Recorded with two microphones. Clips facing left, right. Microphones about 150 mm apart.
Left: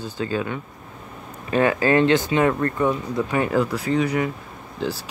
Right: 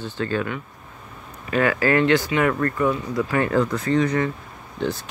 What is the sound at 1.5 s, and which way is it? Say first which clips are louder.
Speech: left 1 dB; 20° left (ahead or behind).